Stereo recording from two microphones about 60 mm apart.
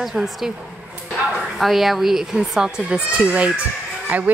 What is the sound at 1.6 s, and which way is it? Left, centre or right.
Speech, centre.